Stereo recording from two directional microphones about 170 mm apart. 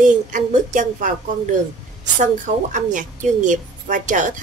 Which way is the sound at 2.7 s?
50° right (ahead or behind).